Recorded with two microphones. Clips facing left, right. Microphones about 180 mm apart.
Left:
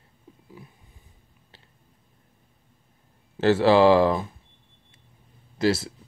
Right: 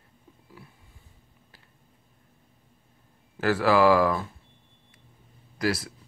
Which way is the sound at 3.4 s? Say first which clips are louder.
Left 4 dB; 25° left (ahead or behind).